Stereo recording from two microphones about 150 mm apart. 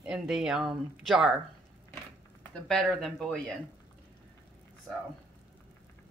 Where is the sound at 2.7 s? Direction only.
5° left (ahead or behind).